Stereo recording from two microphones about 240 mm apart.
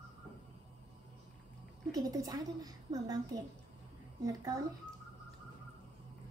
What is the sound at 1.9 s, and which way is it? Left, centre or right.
A woman's voice, centre.